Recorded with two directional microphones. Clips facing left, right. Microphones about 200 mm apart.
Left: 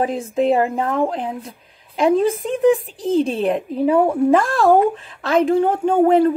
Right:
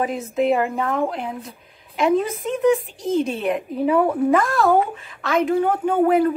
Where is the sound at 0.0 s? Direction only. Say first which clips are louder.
Left 2 dB; 30° left (ahead or behind).